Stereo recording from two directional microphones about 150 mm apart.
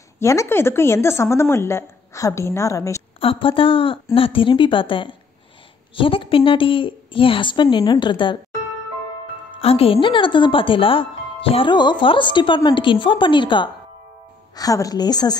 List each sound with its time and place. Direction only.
0.2 s a woman's voice: 20° left (ahead or behind)
3.2 s speech: 35° left (ahead or behind)
9.6 s a woman's voice: 40° left (ahead or behind)